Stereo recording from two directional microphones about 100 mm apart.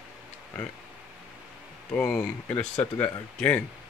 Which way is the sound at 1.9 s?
10° left (ahead or behind).